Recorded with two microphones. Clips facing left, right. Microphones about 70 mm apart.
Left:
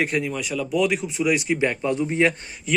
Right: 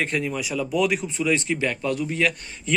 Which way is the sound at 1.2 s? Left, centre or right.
Centre.